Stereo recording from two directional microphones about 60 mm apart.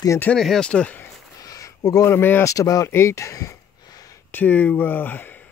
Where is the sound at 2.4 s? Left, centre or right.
Left.